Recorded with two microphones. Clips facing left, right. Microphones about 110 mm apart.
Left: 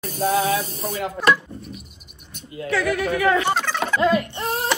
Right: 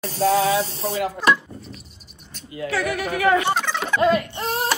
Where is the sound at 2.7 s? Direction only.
20° right (ahead or behind).